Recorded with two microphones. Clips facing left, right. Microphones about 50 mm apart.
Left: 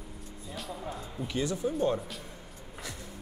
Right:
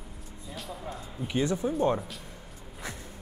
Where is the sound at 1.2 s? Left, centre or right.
Right.